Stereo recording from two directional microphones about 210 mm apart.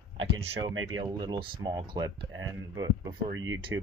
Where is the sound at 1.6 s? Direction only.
20° right (ahead or behind).